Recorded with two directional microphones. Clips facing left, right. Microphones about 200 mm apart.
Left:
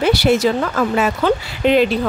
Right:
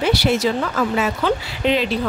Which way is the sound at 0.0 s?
50° left (ahead or behind).